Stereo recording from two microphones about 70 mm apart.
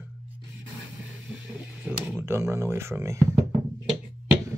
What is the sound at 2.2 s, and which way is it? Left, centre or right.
Speech, right.